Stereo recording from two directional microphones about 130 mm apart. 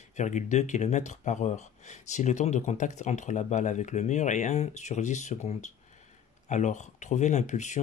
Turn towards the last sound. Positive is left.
turn(degrees=65)  # may be behind; listen again after turning